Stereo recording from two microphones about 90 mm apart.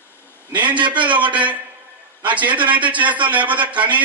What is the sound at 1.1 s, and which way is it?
A man's voice, 15° right (ahead or behind).